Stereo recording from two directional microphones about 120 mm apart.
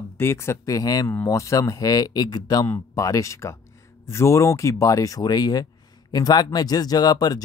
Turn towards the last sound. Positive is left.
turn(degrees=35)  # may be behind; listen again after turning